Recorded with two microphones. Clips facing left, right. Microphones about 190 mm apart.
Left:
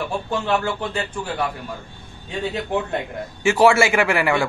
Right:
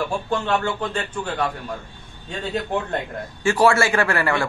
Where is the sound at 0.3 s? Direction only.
10° left (ahead or behind).